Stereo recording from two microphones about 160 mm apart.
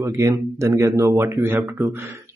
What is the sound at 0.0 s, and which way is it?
A man's voice, 20° right (ahead or behind).